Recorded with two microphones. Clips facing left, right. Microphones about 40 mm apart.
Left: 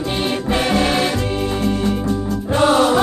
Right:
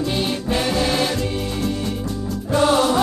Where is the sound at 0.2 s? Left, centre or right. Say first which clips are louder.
Left 3 dB; left.